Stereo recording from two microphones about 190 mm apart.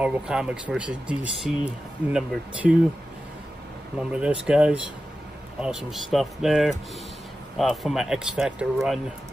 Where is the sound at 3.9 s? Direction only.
5° right (ahead or behind).